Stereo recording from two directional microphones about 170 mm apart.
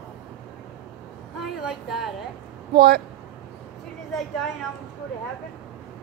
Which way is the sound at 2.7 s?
70° right (ahead or behind).